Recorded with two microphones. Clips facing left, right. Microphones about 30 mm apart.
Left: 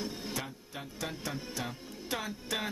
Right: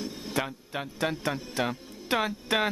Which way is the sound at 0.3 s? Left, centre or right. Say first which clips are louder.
Right 8 dB; right.